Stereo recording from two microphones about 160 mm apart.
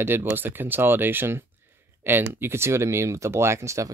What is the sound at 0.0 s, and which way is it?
Speech, 15° right (ahead or behind).